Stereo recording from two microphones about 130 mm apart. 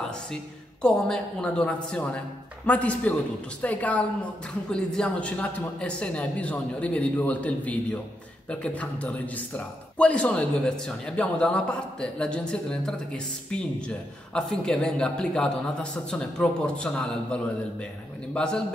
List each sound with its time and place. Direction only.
0.8 s a man's voice: 5° left (ahead or behind)